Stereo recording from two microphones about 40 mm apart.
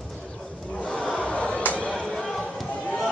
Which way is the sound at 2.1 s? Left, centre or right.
Centre.